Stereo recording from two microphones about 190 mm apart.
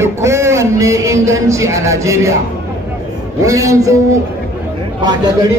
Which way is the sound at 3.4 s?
15° right (ahead or behind).